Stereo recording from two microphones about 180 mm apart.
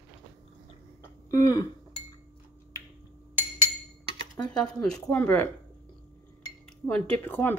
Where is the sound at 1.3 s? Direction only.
20° left (ahead or behind).